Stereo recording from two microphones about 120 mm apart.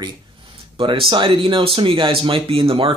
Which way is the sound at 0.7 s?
50° right (ahead or behind).